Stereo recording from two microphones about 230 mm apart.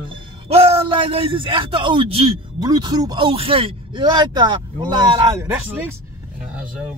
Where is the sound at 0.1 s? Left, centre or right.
Right.